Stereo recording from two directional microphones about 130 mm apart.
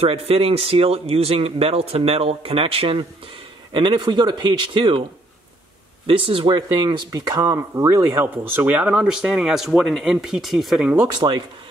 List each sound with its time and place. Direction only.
0.0 s speech: 50° right (ahead or behind)
6.0 s speech: 45° right (ahead or behind); by 10.9 s centre (ahead or behind)
11.1 s speech: 35° right (ahead or behind)